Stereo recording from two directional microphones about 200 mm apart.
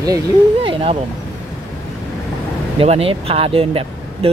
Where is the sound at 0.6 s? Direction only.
25° right (ahead or behind).